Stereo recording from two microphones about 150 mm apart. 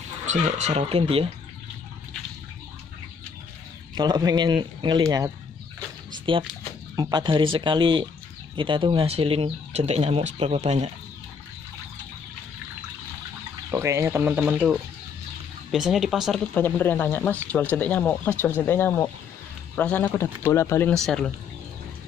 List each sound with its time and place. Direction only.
0.3 s speech: 50° right (ahead or behind)
3.9 s a man's voice: 25° right (ahead or behind)
6.3 s speech: 35° right (ahead or behind)
13.7 s speech: 20° right (ahead or behind); by 16.3 s centre (ahead or behind)
16.5 s speech: 10° left (ahead or behind)
21.0 s speech: 5° left (ahead or behind)